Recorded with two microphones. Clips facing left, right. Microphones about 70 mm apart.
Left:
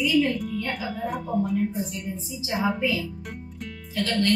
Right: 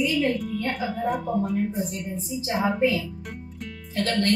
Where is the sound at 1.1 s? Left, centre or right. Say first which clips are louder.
Even; centre.